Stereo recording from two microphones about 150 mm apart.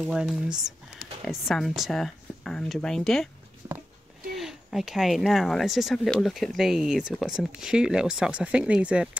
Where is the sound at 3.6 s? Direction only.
25° right (ahead or behind).